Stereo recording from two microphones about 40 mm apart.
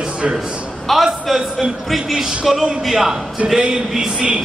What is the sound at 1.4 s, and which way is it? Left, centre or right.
A man's voice, centre.